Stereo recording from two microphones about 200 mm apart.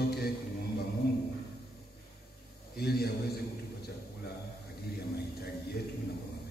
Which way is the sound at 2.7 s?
50° left (ahead or behind).